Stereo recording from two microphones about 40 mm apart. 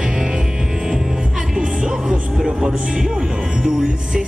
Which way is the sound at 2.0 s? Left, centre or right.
Centre.